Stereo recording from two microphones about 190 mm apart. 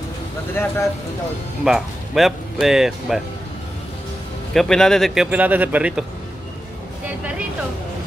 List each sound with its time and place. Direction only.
0.6 s speech: 10° left (ahead or behind)
1.6 s speech: centre (ahead or behind)
4.6 s speech: centre (ahead or behind)
7.1 s a sound: 10° right (ahead or behind)